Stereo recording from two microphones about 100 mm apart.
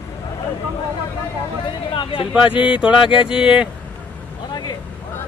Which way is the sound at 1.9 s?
55° left (ahead or behind).